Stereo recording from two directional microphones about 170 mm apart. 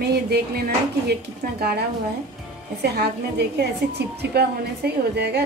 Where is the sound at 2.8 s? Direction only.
75° right (ahead or behind).